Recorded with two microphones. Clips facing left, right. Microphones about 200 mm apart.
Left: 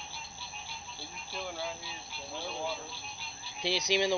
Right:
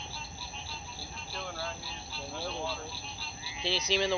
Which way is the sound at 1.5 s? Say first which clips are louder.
Left 1 dB; 15° left (ahead or behind).